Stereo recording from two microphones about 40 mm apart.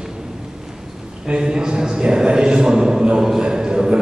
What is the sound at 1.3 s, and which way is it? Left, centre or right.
A man's voice, right.